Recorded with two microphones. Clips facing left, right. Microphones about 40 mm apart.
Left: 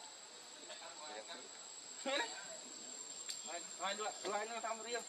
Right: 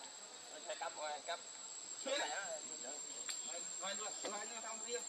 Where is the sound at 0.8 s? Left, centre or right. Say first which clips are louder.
Right 9 dB; right.